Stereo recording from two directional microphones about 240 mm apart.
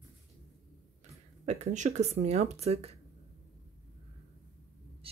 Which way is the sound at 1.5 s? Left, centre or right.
Right.